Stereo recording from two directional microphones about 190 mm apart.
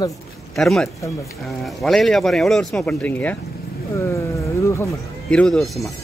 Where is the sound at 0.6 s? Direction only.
Centre (ahead or behind).